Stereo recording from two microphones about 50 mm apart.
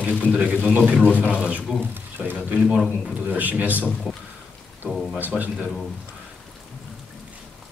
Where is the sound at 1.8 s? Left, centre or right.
Right.